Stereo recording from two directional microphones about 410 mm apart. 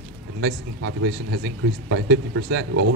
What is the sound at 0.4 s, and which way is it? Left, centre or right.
Speech, right.